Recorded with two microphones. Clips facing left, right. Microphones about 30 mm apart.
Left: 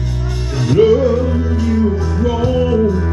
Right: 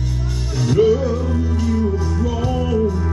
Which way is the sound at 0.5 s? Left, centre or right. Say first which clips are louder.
Left 4 dB; left.